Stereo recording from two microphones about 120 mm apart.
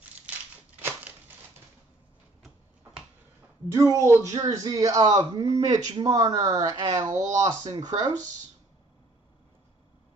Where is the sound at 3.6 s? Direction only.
25° right (ahead or behind).